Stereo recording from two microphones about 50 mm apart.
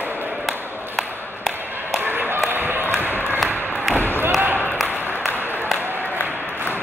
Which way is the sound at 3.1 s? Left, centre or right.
Left.